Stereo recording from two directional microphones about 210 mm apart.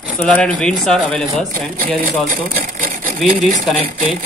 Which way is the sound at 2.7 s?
40° right (ahead or behind).